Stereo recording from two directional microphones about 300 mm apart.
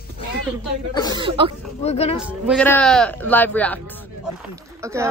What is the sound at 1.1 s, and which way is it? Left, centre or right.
Speech, centre.